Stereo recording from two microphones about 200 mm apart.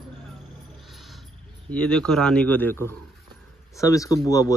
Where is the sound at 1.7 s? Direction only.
5° left (ahead or behind).